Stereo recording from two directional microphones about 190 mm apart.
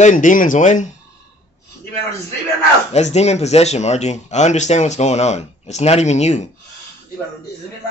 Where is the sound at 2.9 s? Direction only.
35° left (ahead or behind).